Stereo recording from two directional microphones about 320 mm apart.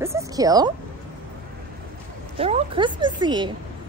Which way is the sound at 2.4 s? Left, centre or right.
Centre.